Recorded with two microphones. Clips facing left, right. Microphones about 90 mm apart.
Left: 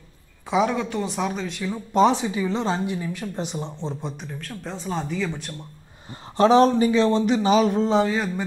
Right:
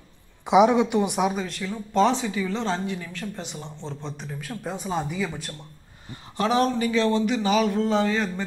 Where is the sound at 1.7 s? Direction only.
15° left (ahead or behind).